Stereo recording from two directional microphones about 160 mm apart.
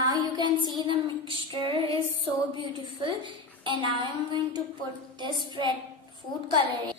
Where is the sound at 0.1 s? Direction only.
25° right (ahead or behind).